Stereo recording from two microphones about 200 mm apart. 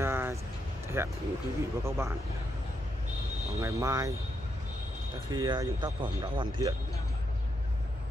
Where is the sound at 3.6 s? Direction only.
15° right (ahead or behind).